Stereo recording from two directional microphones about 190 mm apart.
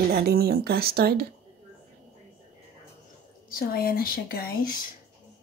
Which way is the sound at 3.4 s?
50° left (ahead or behind).